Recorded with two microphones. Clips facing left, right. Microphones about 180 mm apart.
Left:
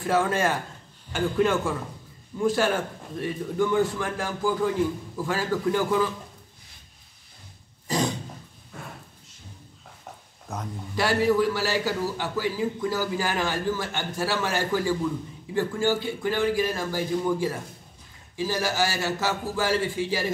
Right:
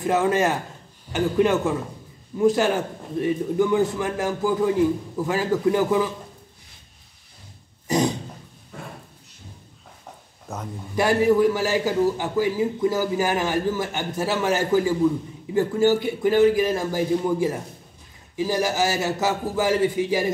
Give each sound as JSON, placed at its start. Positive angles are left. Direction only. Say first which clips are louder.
{"t": 0.0, "sound": "a man's voice", "louder": "right 3 dB", "side_deg": -20}
{"t": 11.0, "sound": "a man's voice", "louder": "right 4 dB", "side_deg": -15}